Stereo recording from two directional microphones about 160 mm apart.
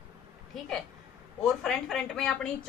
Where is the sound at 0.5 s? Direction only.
Centre (ahead or behind).